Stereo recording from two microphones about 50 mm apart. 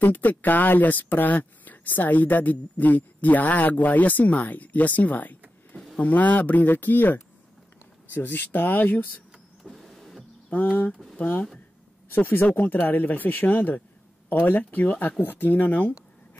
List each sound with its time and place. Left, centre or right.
0.0 s speech: left
9.6 s power windows: centre
10.5 s speech: left
12.1 s speech: left